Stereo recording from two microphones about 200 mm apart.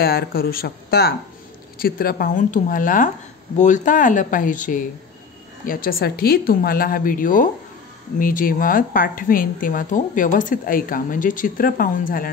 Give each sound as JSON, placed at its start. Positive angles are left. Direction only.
{"t": 0.0, "sound": "a woman's voice", "side_deg": 50}